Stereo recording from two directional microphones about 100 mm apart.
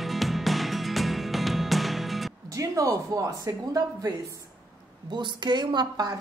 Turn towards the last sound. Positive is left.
turn(degrees=-45)  # may be behind; listen again after turning